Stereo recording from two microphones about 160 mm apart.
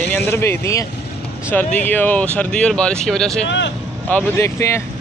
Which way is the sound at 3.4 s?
90° left.